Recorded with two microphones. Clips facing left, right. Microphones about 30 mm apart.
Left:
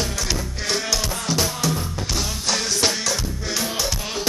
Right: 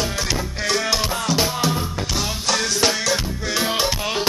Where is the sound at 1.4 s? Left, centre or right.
Right.